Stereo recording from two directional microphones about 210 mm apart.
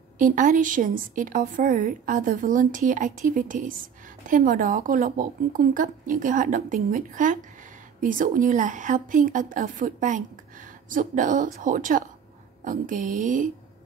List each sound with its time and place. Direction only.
0.2 s a woman's voice: 40° right (ahead or behind)